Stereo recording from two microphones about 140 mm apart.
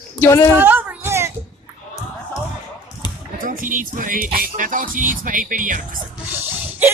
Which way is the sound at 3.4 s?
80° right.